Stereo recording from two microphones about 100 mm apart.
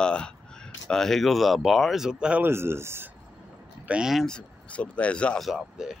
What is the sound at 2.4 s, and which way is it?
Speech, 25° right (ahead or behind).